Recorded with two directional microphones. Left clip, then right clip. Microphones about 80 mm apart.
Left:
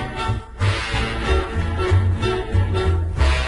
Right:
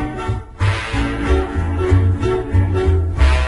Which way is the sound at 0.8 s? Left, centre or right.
Centre.